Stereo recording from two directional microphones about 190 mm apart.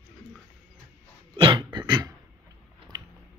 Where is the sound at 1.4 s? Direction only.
25° right (ahead or behind).